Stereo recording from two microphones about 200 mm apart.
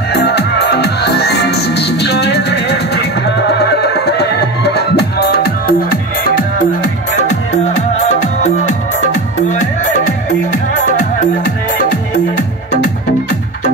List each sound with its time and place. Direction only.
0.1 s music: 55° left (ahead or behind)
7.2 s music: 35° left (ahead or behind)
10.9 s music: 40° left (ahead or behind)